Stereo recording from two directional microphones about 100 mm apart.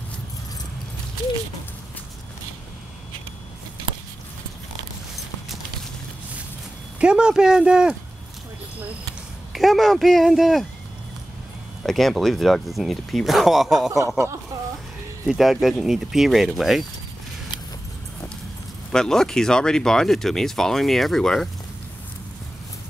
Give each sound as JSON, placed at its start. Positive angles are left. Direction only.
{"t": 7.0, "sound": "speech", "side_deg": -10}
{"t": 9.5, "sound": "speech", "side_deg": 0}
{"t": 11.8, "sound": "speech", "side_deg": 0}
{"t": 14.0, "sound": "speech", "side_deg": -30}
{"t": 15.2, "sound": "speech", "side_deg": 0}
{"t": 18.9, "sound": "speech", "side_deg": 5}